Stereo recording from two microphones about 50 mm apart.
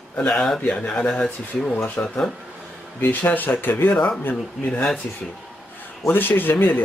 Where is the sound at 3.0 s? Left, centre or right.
Left.